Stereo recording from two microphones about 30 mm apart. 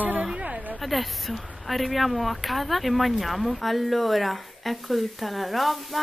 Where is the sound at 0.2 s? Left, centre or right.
Right.